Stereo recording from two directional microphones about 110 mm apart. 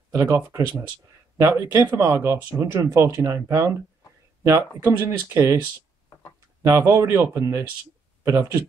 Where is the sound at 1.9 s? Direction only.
25° right (ahead or behind).